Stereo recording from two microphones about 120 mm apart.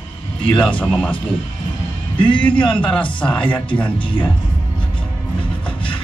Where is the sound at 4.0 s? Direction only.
45° left (ahead or behind).